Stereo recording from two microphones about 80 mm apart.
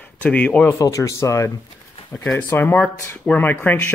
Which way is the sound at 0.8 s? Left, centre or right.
Left.